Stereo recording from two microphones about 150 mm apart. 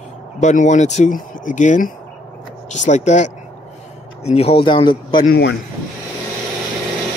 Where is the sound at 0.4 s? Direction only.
50° left (ahead or behind); by 5.2 s 35° left (ahead or behind).